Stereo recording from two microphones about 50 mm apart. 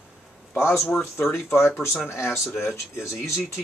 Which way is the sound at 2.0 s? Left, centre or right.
Left.